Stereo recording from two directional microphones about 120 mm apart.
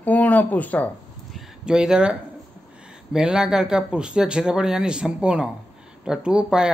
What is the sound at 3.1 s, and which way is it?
Speech, 5° right (ahead or behind).